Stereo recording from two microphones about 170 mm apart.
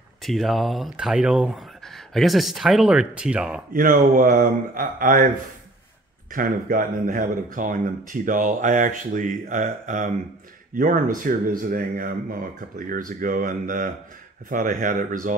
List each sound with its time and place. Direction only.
0.2 s speech: centre (ahead or behind)
3.7 s a man's voice: 55° right (ahead or behind)
6.3 s speech: 55° right (ahead or behind)